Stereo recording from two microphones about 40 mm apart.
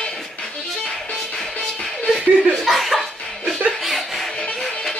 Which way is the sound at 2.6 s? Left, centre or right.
Centre.